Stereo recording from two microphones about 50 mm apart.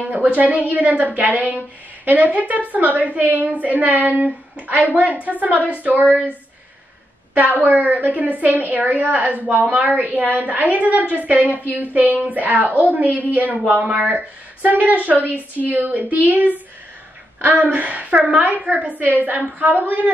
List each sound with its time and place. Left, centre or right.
0.1 s a woman's voice: right
7.3 s a woman's voice: right